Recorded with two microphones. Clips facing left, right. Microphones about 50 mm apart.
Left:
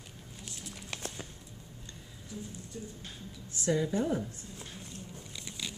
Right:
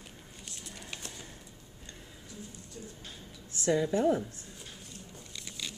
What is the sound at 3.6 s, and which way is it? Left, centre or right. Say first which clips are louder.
Speech: right 2 dB; centre.